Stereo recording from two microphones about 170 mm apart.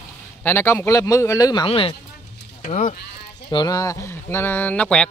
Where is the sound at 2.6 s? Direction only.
45° left (ahead or behind).